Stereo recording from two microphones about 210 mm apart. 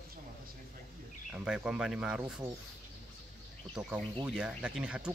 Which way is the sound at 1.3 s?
5° right (ahead or behind).